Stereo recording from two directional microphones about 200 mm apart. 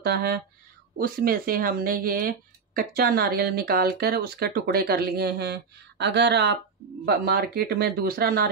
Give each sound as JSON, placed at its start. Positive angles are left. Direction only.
{"t": 0.0, "sound": "speech", "side_deg": -55}